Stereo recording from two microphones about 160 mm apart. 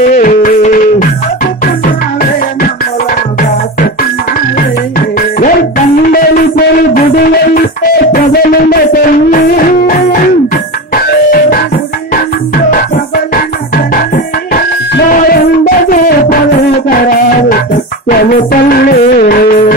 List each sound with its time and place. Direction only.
0.1 s music: 60° left (ahead or behind)
6.1 s music: 65° left (ahead or behind)
15.0 s music: 70° left (ahead or behind)
18.1 s music: 65° left (ahead or behind)